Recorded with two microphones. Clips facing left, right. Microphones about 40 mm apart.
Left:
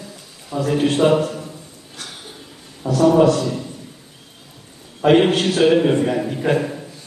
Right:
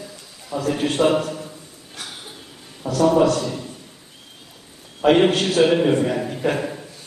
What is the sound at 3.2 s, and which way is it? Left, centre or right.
Speech, centre.